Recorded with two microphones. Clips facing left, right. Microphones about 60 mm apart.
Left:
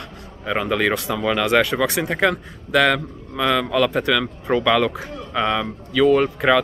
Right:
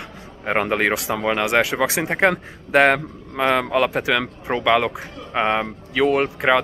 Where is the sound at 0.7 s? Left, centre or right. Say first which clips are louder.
Even; right.